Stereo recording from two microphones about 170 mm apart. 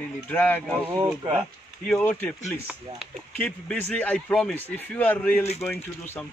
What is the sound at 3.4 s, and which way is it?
Speech, 10° left (ahead or behind).